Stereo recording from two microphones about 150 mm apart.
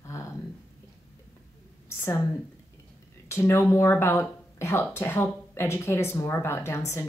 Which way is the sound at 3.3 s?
15° left (ahead or behind).